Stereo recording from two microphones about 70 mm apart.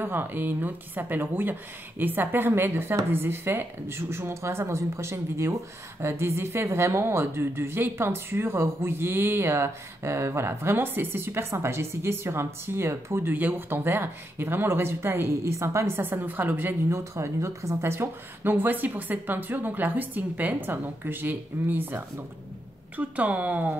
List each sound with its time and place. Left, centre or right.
0.0 s a woman's voice: right
13.3 s a woman's voice: right
16.0 s speech: right
17.1 s speech: right
22.9 s speech: right